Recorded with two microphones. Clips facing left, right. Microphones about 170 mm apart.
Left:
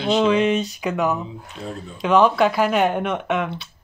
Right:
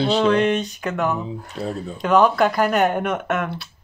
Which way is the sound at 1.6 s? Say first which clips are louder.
Right 5 dB; 35° right (ahead or behind).